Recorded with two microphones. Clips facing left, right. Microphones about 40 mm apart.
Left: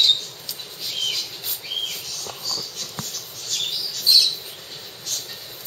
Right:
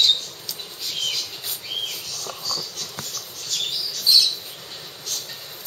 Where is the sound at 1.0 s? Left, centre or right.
Centre.